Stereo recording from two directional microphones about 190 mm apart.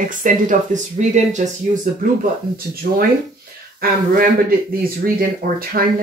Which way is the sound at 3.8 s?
50° right (ahead or behind).